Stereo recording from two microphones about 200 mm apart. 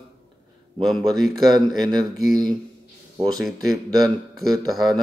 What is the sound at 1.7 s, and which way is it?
Speech, 20° right (ahead or behind).